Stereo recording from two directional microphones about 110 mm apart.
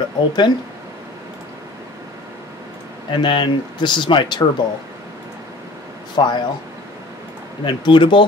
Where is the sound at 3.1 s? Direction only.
45° left (ahead or behind).